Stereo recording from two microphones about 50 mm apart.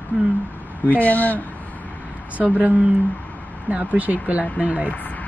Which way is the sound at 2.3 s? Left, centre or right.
Right.